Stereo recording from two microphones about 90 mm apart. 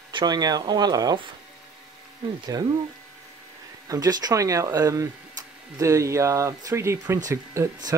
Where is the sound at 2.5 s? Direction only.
45° right (ahead or behind).